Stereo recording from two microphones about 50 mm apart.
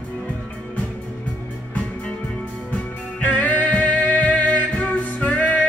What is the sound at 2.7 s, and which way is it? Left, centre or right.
Music, left.